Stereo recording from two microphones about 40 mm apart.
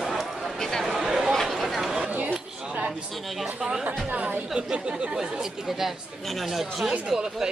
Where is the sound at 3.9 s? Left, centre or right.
Right.